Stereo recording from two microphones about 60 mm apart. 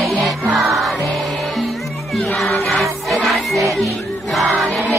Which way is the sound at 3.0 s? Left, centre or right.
Centre.